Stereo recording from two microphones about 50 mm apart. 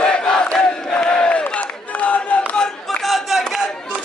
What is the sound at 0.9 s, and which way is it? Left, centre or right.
Battle cry, left.